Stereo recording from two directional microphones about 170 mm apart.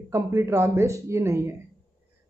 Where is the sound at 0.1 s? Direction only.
15° right (ahead or behind).